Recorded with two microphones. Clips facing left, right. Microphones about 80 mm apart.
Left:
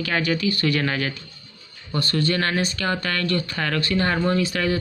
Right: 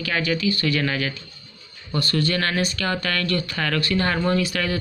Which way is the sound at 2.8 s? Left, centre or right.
Left.